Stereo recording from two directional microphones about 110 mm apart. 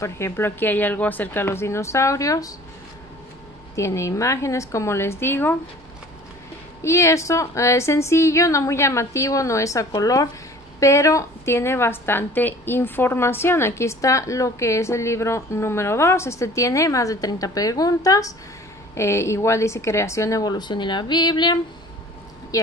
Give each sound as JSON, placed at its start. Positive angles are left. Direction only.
{"t": 0.0, "sound": "a woman's voice", "side_deg": 25}
{"t": 3.7, "sound": "a woman's voice", "side_deg": 25}
{"t": 6.8, "sound": "a woman's voice", "side_deg": 25}
{"t": 22.5, "sound": "a sound", "side_deg": 30}